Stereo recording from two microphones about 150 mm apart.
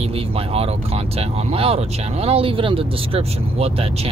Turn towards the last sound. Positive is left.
turn(degrees=-40)  # may be behind; listen again after turning